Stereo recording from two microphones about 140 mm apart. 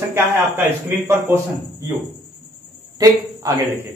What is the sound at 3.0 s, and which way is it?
Speech, 25° right (ahead or behind).